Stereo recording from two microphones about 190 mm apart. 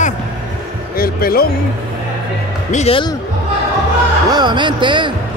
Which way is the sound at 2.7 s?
35° left (ahead or behind).